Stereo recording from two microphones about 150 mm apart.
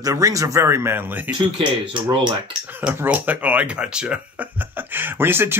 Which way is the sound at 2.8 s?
10° right (ahead or behind).